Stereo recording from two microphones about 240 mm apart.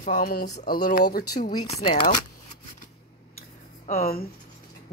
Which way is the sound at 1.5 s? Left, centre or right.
Left.